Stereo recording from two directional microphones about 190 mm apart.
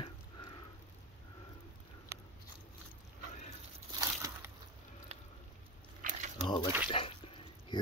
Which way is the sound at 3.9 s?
15° right (ahead or behind).